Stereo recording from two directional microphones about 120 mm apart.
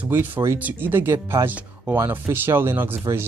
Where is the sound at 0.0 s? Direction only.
15° right (ahead or behind).